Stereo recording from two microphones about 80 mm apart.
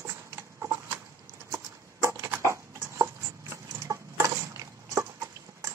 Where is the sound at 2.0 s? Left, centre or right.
Right.